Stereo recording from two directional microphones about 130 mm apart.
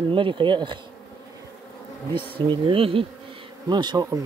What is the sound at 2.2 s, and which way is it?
Speech, 40° right (ahead or behind).